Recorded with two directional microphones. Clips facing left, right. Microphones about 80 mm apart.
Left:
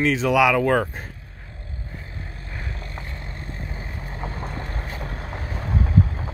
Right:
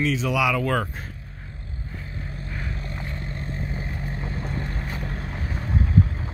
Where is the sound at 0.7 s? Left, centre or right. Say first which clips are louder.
Left 4 dB; left.